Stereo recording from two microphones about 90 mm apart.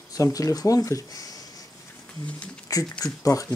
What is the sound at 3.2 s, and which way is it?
Speech, 40° left (ahead or behind).